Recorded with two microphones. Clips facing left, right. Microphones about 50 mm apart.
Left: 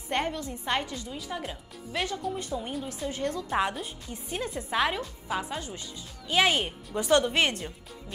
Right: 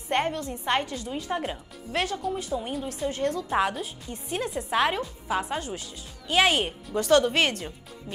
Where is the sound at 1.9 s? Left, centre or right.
Right.